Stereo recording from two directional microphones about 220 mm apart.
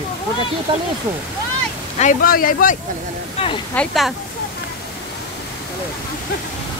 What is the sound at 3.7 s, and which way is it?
Speech, centre (ahead or behind).